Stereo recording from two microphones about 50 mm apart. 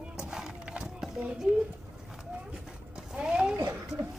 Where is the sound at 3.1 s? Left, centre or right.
Centre.